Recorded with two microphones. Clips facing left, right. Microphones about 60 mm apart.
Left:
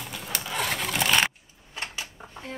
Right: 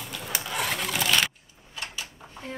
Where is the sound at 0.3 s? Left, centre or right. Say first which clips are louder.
Even; centre.